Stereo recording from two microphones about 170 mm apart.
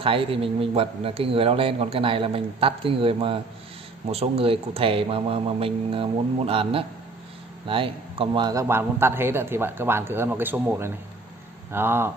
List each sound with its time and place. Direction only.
0.0 s a man's voice: 30° right (ahead or behind); by 12.1 s 15° right (ahead or behind)